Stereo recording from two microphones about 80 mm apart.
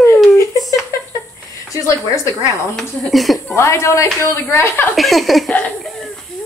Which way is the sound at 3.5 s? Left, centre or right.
Left.